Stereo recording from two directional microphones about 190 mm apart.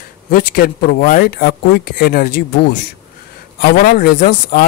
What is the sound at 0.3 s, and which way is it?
Speech, 50° left (ahead or behind).